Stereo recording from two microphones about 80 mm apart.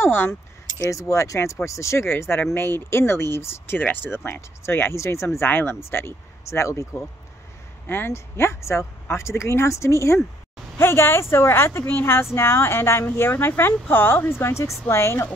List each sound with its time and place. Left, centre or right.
0.0 s keys jangling: left
0.8 s a woman's voice: left